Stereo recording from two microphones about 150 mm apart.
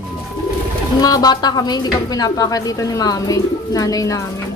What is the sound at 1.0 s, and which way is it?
Speech, 25° left (ahead or behind).